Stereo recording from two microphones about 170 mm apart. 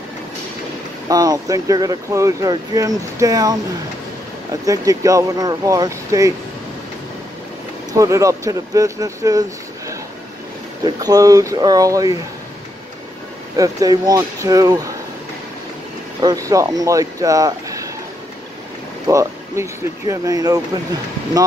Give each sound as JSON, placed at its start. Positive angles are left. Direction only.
{"t": 1.0, "sound": "speech", "side_deg": -20}
{"t": 4.6, "sound": "speech", "side_deg": -20}
{"t": 8.0, "sound": "speech", "side_deg": -20}
{"t": 11.0, "sound": "speech", "side_deg": -20}
{"t": 13.6, "sound": "speech", "side_deg": -20}
{"t": 16.2, "sound": "speech", "side_deg": -20}
{"t": 19.0, "sound": "speech", "side_deg": -20}